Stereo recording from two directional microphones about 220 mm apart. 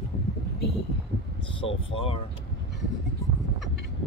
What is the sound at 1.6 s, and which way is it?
Speech, 25° left (ahead or behind).